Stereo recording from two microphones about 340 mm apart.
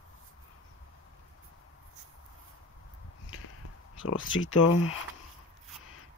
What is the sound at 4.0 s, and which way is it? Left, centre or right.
Speech, left.